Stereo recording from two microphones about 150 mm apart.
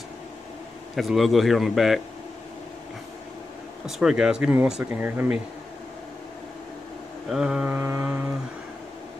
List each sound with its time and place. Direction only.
0.9 s a man's voice: centre (ahead or behind)
3.8 s speech: 5° right (ahead or behind)
7.2 s mantra: 5° right (ahead or behind)